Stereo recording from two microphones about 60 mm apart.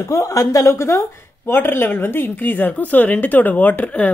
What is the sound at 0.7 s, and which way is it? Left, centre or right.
Speech, left.